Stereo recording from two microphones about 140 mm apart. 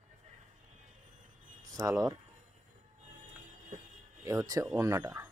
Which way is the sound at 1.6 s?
25° right (ahead or behind).